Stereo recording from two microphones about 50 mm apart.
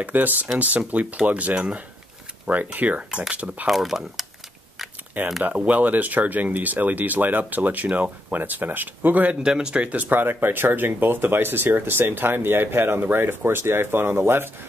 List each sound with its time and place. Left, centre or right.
0.0 s speech: right
3.6 s speech: centre
5.4 s speech: right
9.4 s speech: centre
9.8 s speech: right
10.2 s speech: right